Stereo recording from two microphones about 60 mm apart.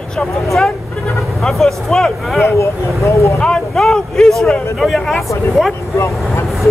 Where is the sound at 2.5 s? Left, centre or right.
Left.